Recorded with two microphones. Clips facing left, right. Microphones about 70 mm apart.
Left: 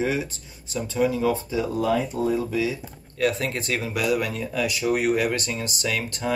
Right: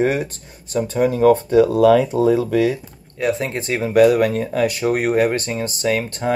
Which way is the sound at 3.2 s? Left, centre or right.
Right.